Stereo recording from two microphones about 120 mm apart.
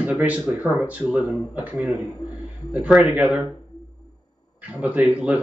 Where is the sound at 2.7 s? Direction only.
15° right (ahead or behind).